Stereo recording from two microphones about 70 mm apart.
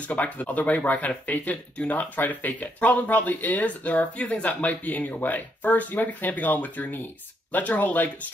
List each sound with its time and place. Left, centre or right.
0.1 s speech: left